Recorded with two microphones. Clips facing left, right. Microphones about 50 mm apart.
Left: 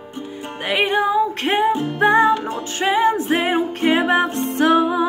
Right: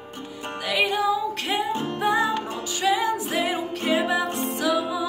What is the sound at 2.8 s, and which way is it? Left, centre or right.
Music, left.